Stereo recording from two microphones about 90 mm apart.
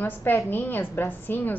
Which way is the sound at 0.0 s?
20° left (ahead or behind).